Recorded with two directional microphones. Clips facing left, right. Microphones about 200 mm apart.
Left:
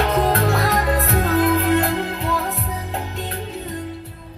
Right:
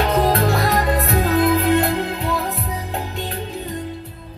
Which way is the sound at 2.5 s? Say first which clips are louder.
Right 1 dB; 15° right (ahead or behind).